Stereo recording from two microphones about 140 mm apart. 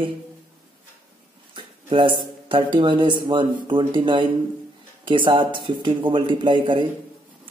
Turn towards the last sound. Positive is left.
turn(degrees=-35)  # may be behind; listen again after turning